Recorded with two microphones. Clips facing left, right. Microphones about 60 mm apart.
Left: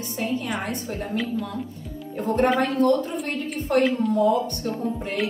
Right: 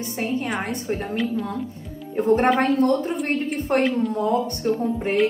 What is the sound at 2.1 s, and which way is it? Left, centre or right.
A woman's voice, right.